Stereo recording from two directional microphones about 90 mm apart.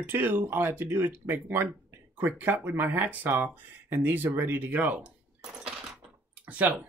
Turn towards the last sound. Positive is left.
turn(degrees=-15)  # may be behind; listen again after turning